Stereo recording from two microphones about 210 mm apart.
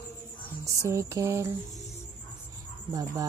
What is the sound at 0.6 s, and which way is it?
Speech, 15° right (ahead or behind).